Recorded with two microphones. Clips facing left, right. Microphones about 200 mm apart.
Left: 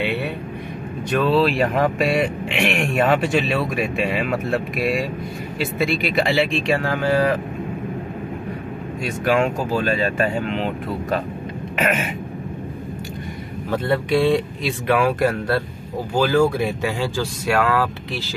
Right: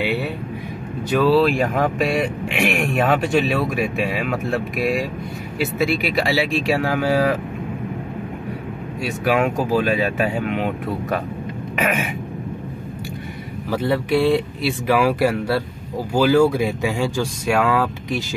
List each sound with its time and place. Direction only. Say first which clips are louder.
1.1 s speech: right 2 dB; centre (ahead or behind)
9.0 s speech: even; 5° right (ahead or behind)
13.7 s speech: right 1 dB; 5° right (ahead or behind)